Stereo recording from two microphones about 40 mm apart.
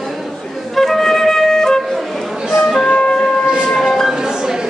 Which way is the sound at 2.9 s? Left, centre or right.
Left.